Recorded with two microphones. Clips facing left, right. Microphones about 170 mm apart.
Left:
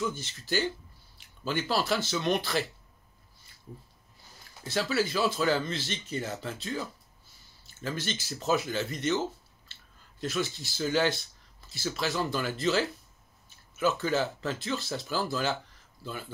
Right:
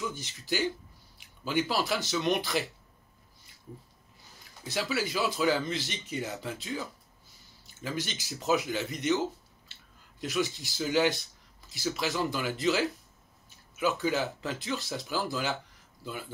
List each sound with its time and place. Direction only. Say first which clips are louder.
0.1 s speech: left 2 dB; 15° right (ahead or behind)
4.6 s speech: left 3 dB; 15° right (ahead or behind)
10.2 s speech: right 1 dB; 15° right (ahead or behind)